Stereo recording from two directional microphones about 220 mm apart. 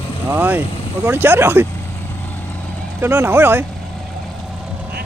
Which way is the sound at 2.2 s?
5° left (ahead or behind).